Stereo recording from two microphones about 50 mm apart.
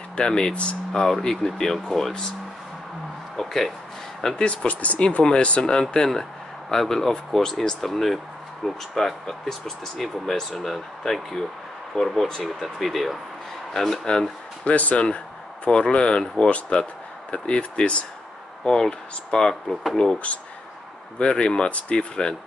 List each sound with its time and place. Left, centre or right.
0.1 s speech: centre
1.0 s speech: centre
3.3 s speech: centre
4.6 s speech: left; by 14.0 s centre
14.6 s a sound: left
15.7 s speech: left
20.3 s speech: left